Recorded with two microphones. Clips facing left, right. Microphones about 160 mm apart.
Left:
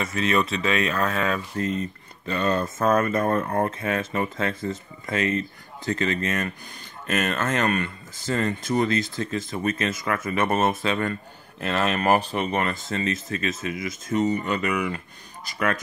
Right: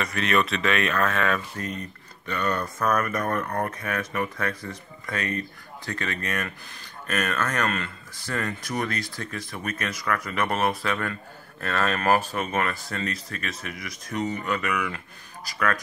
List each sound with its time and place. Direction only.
0.0 s speech: 25° left (ahead or behind)